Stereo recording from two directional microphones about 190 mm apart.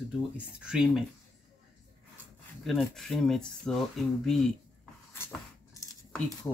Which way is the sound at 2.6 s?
Centre (ahead or behind).